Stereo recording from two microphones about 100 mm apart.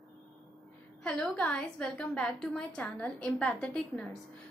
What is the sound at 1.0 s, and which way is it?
A woman's voice, 10° left (ahead or behind).